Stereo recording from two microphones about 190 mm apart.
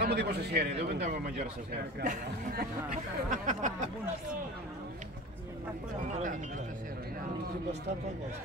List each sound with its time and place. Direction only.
0.0 s a man's voice: 60° right (ahead or behind)
2.0 s speech: 50° right (ahead or behind)